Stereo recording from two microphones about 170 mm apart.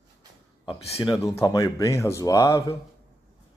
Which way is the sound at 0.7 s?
35° left (ahead or behind).